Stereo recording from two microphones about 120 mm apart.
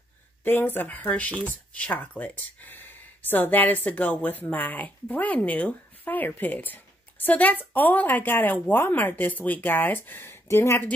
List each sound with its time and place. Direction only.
0.4 s speech: 15° left (ahead or behind)